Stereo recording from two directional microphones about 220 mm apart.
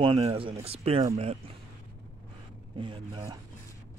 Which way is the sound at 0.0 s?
20° right (ahead or behind).